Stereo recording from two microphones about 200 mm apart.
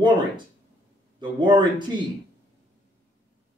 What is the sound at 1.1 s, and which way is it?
Speech, 20° right (ahead or behind).